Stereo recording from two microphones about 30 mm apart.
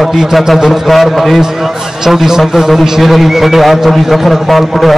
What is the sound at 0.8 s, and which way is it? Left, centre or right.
Speech, centre.